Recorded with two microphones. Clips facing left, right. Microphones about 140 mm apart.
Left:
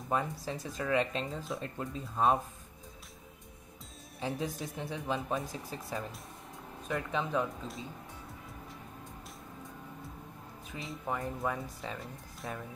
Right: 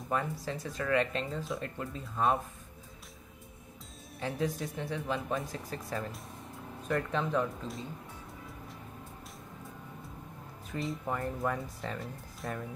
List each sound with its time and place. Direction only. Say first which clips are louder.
0.1 s speech: even; 20° left (ahead or behind)
4.6 s speech: right 2 dB; 5° left (ahead or behind)
4.9 s speech: even; 25° left (ahead or behind)
5.7 s speech: right 2 dB; 10° left (ahead or behind)
10.7 s speech: right 3 dB; 5° left (ahead or behind)